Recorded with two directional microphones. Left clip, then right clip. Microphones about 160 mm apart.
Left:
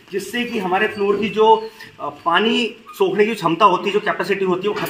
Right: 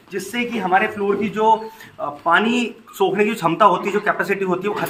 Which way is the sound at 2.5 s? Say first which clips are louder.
Left 2 dB; 10° right (ahead or behind).